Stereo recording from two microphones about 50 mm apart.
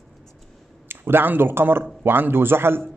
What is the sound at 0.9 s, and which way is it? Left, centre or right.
A man's voice, right.